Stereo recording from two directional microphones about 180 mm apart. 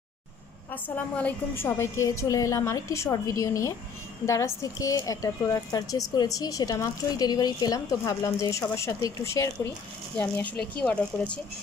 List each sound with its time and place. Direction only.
0.7 s a woman's voice: 10° left (ahead or behind)